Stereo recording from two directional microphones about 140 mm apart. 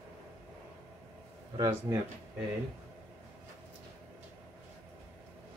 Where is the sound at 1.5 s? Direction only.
25° right (ahead or behind).